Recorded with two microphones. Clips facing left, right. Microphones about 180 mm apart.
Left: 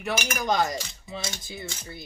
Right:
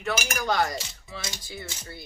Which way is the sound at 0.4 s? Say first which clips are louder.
Left 1 dB; 20° left (ahead or behind).